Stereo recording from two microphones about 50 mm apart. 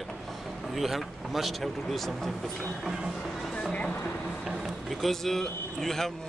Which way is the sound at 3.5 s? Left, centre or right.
Left.